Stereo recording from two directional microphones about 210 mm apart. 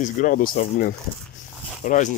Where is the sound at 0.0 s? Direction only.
40° left (ahead or behind).